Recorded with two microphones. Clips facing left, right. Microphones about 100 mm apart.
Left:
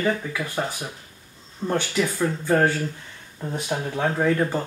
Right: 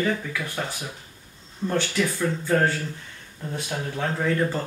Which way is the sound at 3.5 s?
25° left (ahead or behind).